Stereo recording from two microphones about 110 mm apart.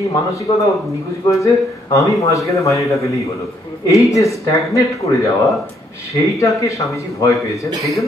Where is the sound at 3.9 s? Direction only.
30° left (ahead or behind).